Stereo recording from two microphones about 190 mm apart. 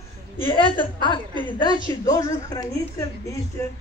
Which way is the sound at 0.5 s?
25° left (ahead or behind).